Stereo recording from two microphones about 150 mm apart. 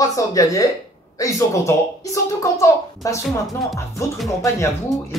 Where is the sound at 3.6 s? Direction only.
Centre (ahead or behind).